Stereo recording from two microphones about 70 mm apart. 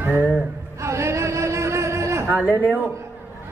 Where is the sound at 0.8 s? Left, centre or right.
Right.